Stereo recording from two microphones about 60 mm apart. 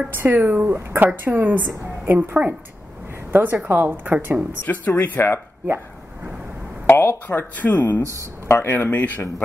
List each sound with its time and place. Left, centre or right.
0.1 s a woman's voice: right
4.6 s speech: left
6.9 s a sound: left
7.2 s speech: left
8.0 s speech: right
8.6 s speech: left